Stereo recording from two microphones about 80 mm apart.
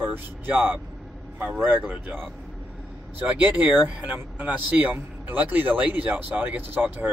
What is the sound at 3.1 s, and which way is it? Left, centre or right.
A man's voice, centre.